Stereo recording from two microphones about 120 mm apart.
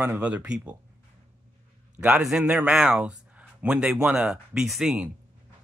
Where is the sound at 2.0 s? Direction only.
10° right (ahead or behind).